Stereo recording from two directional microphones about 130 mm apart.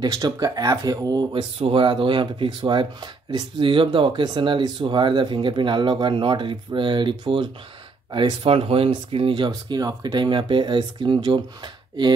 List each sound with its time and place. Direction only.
0.0 s speech: 25° right (ahead or behind); by 9.5 s 45° right (ahead or behind)
9.5 s speech: 30° right (ahead or behind)